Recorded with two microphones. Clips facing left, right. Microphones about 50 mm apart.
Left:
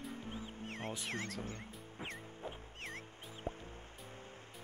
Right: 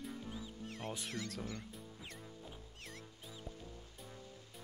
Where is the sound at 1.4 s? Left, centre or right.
Left.